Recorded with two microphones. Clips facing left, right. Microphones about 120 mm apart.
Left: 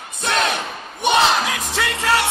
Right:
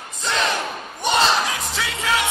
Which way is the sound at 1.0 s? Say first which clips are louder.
Left 2 dB; 65° left (ahead or behind).